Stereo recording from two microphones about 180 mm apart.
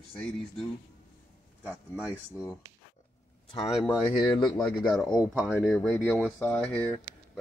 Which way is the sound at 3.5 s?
25° left (ahead or behind).